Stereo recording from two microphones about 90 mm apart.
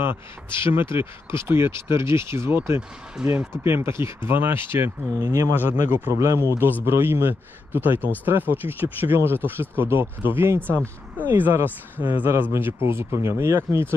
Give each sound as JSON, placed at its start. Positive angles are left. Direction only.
{"t": 0.0, "sound": "speech", "side_deg": -25}
{"t": 6.1, "sound": "speech", "side_deg": -35}